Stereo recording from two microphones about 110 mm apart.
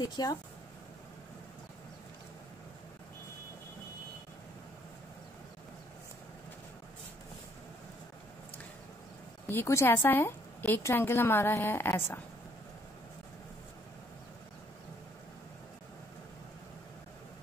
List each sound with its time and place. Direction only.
0.0 s speech: 40° left (ahead or behind)
9.5 s a woman's voice: 25° left (ahead or behind)